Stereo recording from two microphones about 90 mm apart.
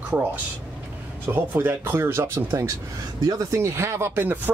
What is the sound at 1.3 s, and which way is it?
Speech, 25° right (ahead or behind).